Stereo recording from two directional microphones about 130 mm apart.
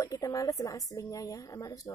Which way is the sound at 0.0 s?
25° left (ahead or behind).